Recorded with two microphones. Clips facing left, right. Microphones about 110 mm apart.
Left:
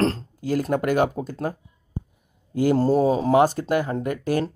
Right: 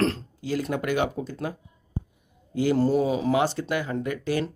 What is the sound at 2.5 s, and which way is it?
Speech, 45° left (ahead or behind).